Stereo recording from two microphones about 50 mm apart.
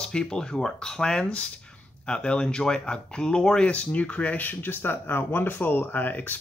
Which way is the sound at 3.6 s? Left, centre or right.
Left.